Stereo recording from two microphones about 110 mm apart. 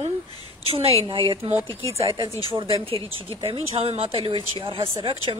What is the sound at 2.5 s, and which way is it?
Speech, 55° right (ahead or behind).